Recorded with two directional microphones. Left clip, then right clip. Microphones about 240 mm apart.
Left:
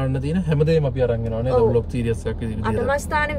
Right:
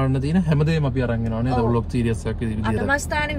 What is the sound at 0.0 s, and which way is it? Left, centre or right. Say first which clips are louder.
Speech: right 2 dB; centre.